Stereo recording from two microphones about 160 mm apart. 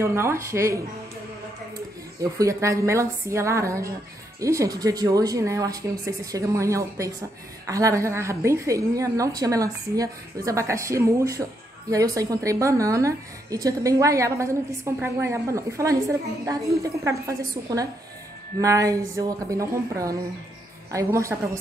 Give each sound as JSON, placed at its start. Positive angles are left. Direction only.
{"t": 0.0, "sound": "speech", "side_deg": -15}
{"t": 2.3, "sound": "speech", "side_deg": -20}